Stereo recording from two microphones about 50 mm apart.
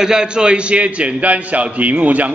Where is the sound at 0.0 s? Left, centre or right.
Centre.